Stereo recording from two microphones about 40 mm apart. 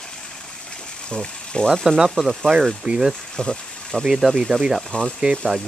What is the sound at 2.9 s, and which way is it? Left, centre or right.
Speech, right.